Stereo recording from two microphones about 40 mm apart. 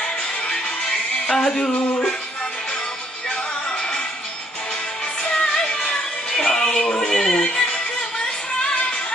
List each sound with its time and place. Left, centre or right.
0.0 s music: left
5.2 s music: left